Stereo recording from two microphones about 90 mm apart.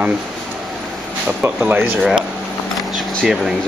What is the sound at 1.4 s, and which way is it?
Speech, 20° right (ahead or behind).